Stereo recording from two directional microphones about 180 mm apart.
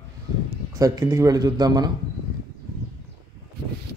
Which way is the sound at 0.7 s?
20° right (ahead or behind).